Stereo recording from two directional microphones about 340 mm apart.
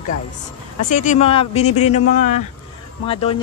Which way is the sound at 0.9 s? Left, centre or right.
Left.